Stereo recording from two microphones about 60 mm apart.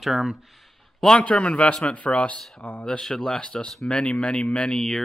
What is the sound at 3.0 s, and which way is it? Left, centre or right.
Speech, centre.